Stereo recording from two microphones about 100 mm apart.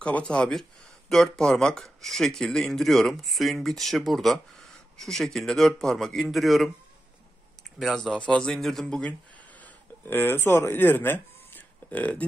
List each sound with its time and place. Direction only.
0.0 s speech: 10° left (ahead or behind)
7.8 s speech: 5° left (ahead or behind)
9.6 s a sound: 20° left (ahead or behind)